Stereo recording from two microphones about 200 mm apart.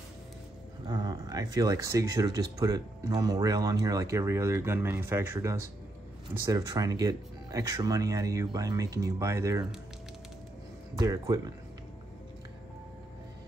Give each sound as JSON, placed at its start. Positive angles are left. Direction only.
{"t": 0.8, "sound": "speech", "side_deg": -20}
{"t": 11.0, "sound": "speech", "side_deg": -15}